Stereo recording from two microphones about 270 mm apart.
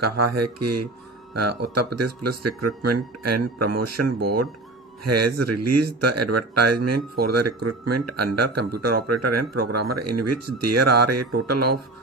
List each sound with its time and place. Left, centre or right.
0.0 s speech: right